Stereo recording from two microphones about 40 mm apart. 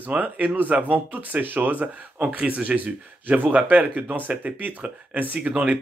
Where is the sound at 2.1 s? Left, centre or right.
Right.